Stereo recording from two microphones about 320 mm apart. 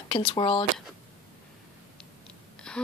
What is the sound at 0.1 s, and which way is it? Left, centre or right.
Speech, centre.